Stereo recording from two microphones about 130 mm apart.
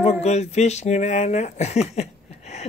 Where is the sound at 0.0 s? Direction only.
55° left (ahead or behind).